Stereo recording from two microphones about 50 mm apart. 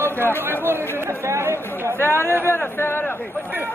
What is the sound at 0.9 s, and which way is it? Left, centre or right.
Speech, right.